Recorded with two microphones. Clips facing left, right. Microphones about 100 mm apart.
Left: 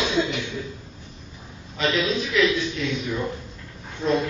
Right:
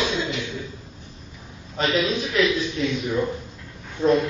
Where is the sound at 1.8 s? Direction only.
40° right (ahead or behind).